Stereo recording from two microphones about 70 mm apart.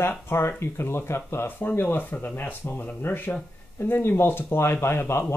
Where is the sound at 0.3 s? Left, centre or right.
Left.